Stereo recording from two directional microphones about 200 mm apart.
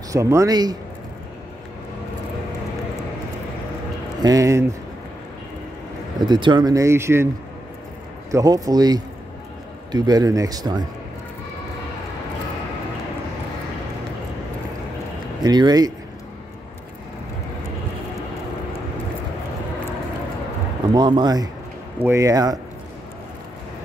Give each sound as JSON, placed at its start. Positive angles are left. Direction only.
{"t": 0.1, "sound": "speech", "side_deg": -15}
{"t": 4.2, "sound": "speech", "side_deg": -15}
{"t": 6.2, "sound": "speech", "side_deg": -20}
{"t": 8.3, "sound": "a man's voice", "side_deg": -15}
{"t": 15.4, "sound": "a man's voice", "side_deg": -20}
{"t": 20.9, "sound": "a man's voice", "side_deg": -20}